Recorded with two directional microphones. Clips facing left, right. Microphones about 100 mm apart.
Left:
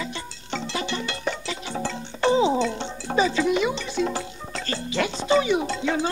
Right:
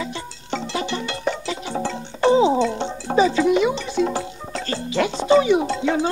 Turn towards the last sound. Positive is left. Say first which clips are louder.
# right 4 dB
turn(degrees=-25)  # may be behind; listen again after turning